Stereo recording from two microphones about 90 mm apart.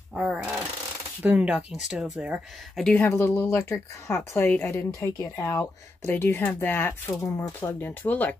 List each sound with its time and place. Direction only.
0.2 s speech: 10° right (ahead or behind)
2.8 s speech: 20° left (ahead or behind)
3.4 s speech: 35° left (ahead or behind); by 8.4 s 20° left (ahead or behind)